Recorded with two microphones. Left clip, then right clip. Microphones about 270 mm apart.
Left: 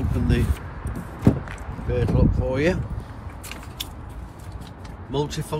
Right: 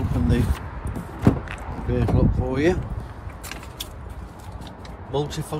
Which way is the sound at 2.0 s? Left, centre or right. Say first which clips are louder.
Even; right.